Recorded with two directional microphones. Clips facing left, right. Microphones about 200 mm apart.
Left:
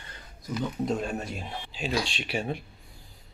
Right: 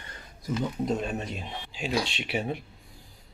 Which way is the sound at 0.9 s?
Centre (ahead or behind).